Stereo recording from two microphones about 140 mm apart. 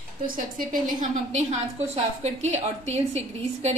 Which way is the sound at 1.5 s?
50° right (ahead or behind).